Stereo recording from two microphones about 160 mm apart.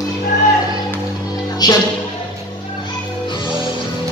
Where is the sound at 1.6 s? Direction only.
25° left (ahead or behind).